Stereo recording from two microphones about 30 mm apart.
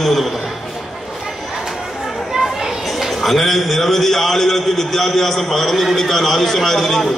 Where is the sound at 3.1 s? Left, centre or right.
Centre.